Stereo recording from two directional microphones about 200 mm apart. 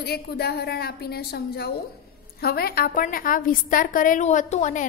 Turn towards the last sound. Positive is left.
turn(degrees=35)  # may be behind; listen again after turning